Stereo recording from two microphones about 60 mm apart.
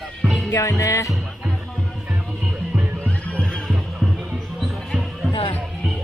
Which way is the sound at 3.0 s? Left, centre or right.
Centre.